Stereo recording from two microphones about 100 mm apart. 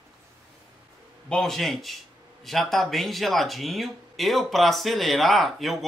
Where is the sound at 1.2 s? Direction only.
5° left (ahead or behind).